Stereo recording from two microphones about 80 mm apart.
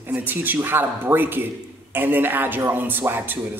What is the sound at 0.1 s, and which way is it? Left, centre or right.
A man's voice, right.